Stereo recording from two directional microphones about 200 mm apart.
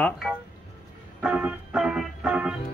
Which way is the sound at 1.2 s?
5° right (ahead or behind).